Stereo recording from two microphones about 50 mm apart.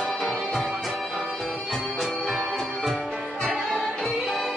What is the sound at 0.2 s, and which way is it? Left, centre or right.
Music, centre.